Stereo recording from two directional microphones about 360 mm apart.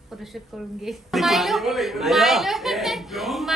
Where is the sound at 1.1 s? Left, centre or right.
Centre.